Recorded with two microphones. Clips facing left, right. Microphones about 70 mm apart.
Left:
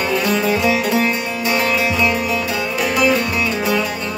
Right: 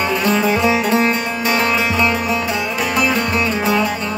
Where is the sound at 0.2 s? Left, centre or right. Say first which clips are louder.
Right 3 dB; right.